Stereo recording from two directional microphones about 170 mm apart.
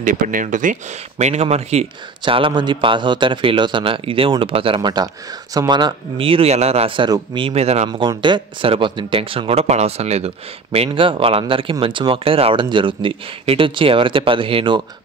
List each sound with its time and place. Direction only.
0.0 s speech: 50° right (ahead or behind)
8.1 s speech: 25° right (ahead or behind)